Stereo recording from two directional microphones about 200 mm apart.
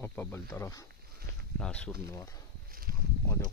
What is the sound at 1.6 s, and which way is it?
Speech, 5° left (ahead or behind).